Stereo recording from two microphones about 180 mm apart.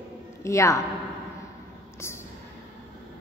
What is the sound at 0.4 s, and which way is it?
Speech, 15° left (ahead or behind).